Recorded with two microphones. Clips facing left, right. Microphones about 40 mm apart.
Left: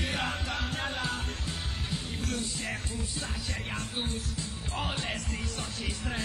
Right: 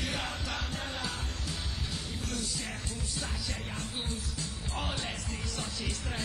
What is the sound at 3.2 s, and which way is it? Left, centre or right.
Music, left.